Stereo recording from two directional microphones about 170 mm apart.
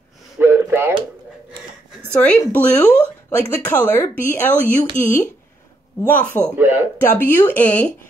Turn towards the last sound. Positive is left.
turn(degrees=10)  # may be behind; listen again after turning